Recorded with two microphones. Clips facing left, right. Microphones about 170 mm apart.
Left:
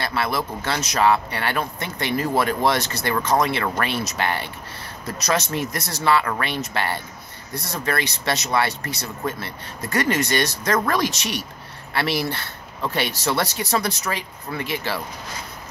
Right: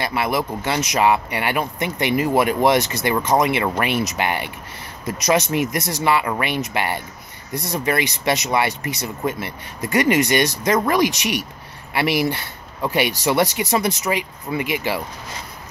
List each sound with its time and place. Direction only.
0.0 s speech: 15° right (ahead or behind)